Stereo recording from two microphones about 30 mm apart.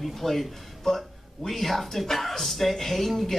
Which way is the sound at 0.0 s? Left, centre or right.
Centre.